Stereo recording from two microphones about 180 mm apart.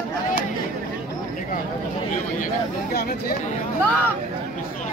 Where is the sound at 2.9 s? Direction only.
55° left (ahead or behind).